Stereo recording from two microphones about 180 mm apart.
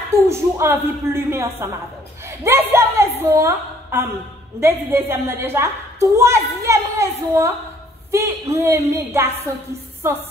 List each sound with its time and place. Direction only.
0.1 s a woman's voice: 15° right (ahead or behind)
2.2 s a sound: 15° right (ahead or behind)
2.7 s a woman's voice: 15° right (ahead or behind)